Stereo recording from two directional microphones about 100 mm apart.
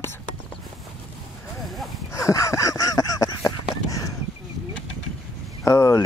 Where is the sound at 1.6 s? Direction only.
Centre (ahead or behind).